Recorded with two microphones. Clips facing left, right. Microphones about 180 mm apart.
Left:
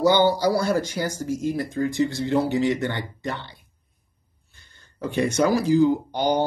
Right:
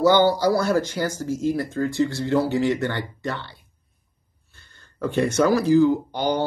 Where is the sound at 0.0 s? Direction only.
15° left (ahead or behind).